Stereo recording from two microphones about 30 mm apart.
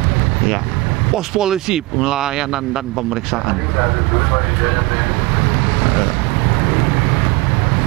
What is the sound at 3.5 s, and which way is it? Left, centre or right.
Speech, centre.